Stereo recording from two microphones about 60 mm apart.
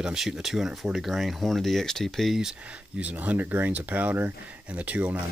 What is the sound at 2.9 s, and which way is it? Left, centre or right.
Speech, right.